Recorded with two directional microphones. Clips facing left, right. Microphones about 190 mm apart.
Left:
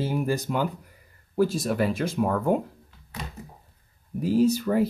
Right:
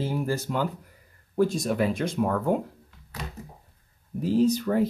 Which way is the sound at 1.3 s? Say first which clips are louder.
Even; 5° left (ahead or behind).